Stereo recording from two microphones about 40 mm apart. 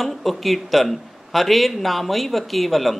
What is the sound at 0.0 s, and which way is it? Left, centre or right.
Speech, centre.